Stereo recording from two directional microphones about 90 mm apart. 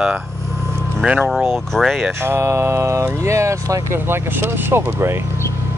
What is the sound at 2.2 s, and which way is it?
Speech, 30° right (ahead or behind).